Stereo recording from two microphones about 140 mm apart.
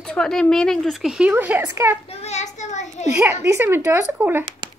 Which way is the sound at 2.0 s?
50° left (ahead or behind).